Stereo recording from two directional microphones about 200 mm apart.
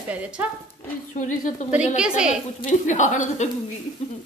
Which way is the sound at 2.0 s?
5° right (ahead or behind).